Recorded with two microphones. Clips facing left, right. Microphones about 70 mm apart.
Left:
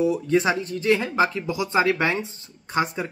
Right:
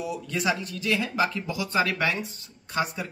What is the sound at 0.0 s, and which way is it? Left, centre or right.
Speech, left.